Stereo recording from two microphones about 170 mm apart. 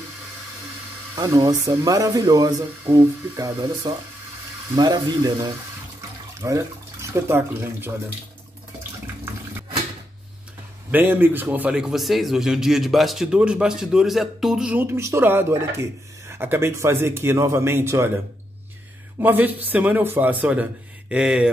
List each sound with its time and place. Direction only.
1.1 s speech: 20° right (ahead or behind)
10.9 s a man's voice: 10° right (ahead or behind)
19.1 s a man's voice: 10° right (ahead or behind)